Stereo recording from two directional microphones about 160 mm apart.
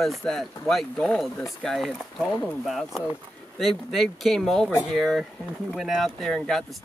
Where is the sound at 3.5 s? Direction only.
Centre (ahead or behind).